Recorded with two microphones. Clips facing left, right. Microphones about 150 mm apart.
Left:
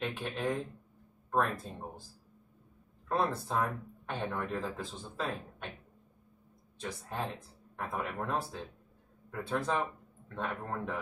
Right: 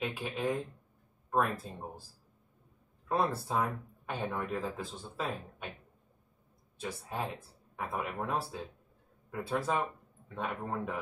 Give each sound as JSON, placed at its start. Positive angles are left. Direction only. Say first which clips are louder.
{"t": 0.0, "sound": "speech", "louder": "even", "side_deg": -5}
{"t": 3.1, "sound": "speech", "louder": "right 1 dB", "side_deg": -5}
{"t": 6.8, "sound": "a man's voice", "louder": "right 1 dB", "side_deg": -5}